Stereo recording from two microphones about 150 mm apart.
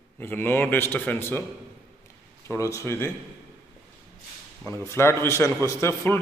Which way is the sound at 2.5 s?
20° left (ahead or behind).